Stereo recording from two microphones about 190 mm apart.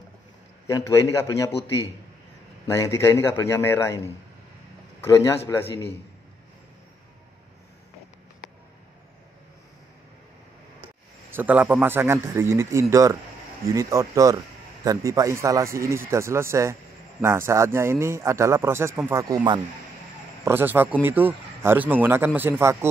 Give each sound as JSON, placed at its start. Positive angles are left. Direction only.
{"t": 0.7, "sound": "a man's voice", "side_deg": 15}
{"t": 2.6, "sound": "a man's voice", "side_deg": 15}
{"t": 11.3, "sound": "a man's voice", "side_deg": -10}